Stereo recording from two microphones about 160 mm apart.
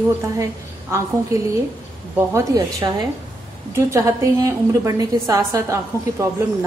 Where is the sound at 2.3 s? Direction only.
20° right (ahead or behind).